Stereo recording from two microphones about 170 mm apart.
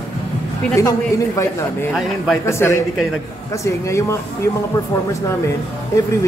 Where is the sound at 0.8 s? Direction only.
15° left (ahead or behind).